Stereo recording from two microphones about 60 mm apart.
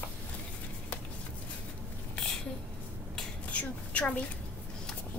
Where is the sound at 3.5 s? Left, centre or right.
Left.